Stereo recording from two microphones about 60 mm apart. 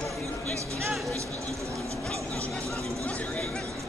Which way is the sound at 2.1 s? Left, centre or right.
Right.